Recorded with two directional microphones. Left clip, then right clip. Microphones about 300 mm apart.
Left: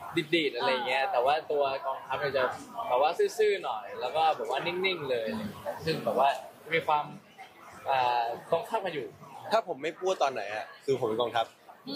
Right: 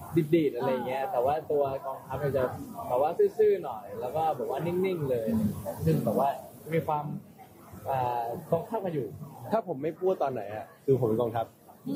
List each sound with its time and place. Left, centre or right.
0.1 s a man's voice: centre
6.2 s a man's voice: centre